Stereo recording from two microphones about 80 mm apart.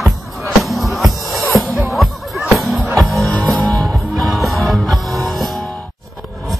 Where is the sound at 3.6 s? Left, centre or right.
Centre.